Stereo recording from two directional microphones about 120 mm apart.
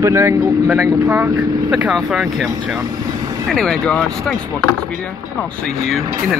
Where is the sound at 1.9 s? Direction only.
Centre (ahead or behind).